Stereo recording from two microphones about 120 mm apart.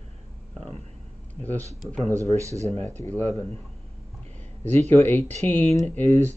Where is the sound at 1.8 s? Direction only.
Centre (ahead or behind).